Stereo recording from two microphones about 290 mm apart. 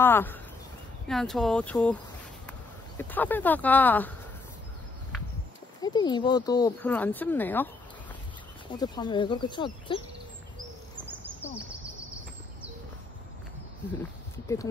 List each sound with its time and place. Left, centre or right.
0.0 s speech: centre
3.0 s speech: centre
5.8 s speech: centre
8.7 s speech: centre
11.1 s bird: centre